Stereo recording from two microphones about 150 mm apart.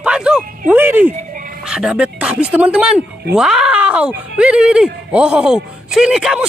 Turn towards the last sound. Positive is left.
turn(degrees=-5)  # may be behind; listen again after turning